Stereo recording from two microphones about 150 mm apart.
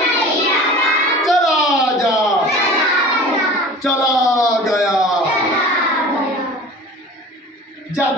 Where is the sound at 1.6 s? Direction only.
20° left (ahead or behind).